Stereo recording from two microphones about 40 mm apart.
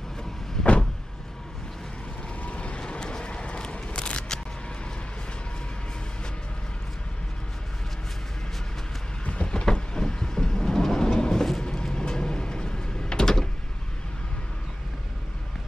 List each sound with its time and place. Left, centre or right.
0.6 s vehicle: centre
2.4 s vehicle: left
2.8 s a sound: left
9.2 s vehicle: left
9.7 s train: centre
11.6 s sliding door: centre